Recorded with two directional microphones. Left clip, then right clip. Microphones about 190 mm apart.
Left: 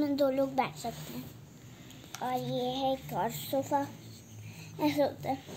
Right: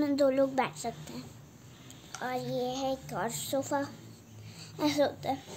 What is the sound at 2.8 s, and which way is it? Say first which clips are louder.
A woman's voice: left 2 dB; 40° right (ahead or behind).